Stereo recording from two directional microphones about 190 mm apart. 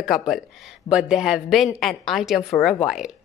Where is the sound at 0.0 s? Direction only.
Centre (ahead or behind).